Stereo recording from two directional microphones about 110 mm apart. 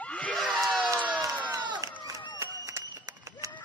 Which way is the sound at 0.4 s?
Centre (ahead or behind).